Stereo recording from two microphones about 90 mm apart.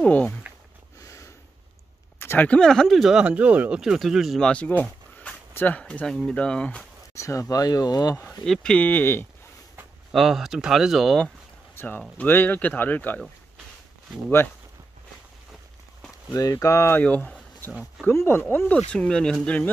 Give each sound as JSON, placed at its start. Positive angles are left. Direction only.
{"t": 0.0, "sound": "speech", "side_deg": 15}
{"t": 1.0, "sound": "sniff", "side_deg": 35}
{"t": 2.1, "sound": "speech", "side_deg": 25}
{"t": 4.5, "sound": "speech", "side_deg": 15}
{"t": 7.2, "sound": "speech", "side_deg": 35}
{"t": 8.3, "sound": "speech", "side_deg": 5}
{"t": 8.7, "sound": "speech", "side_deg": 20}
{"t": 10.1, "sound": "speech", "side_deg": -5}
{"t": 11.7, "sound": "a sound", "side_deg": 25}
{"t": 12.2, "sound": "speech", "side_deg": 20}
{"t": 16.3, "sound": "speech", "side_deg": 40}
{"t": 16.9, "sound": "speech", "side_deg": 15}
{"t": 18.0, "sound": "speech", "side_deg": 30}